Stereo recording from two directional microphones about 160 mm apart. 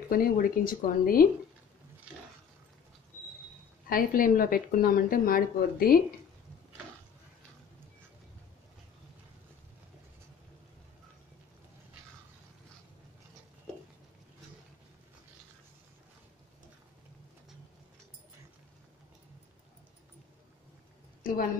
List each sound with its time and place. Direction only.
0.1 s speech: 65° left (ahead or behind)
3.9 s speech: 60° left (ahead or behind)